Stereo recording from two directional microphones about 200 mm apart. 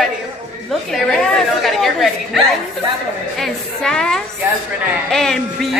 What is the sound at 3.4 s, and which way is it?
A woman's voice, 5° left (ahead or behind).